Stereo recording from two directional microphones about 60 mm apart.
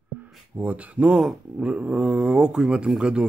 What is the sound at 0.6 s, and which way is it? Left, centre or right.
Speech, right.